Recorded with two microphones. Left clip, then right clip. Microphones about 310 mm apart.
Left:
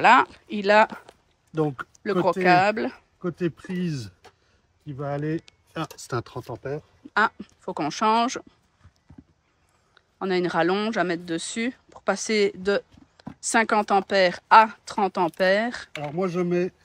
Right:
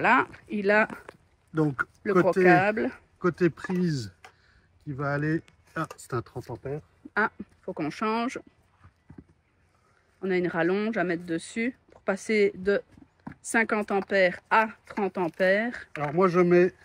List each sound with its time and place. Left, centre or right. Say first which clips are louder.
0.0 s speech: left 6 dB; centre
5.9 s speech: left 3 dB; left
7.2 s speech: left 5 dB; centre
10.1 s speech: left 4 dB; centre